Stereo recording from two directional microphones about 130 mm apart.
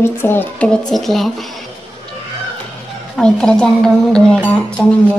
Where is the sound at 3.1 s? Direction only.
5° left (ahead or behind).